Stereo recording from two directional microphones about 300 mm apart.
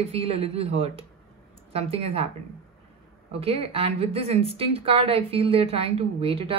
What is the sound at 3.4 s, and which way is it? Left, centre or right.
A woman's voice, centre.